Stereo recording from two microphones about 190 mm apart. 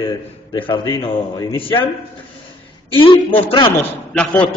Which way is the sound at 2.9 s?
25° left (ahead or behind).